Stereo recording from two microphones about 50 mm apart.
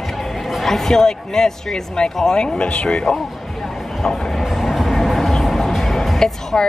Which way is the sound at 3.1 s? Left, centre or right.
Centre.